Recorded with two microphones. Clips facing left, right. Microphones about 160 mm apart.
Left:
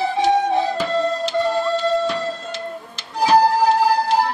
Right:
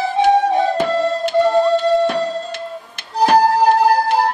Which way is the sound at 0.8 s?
55° right (ahead or behind).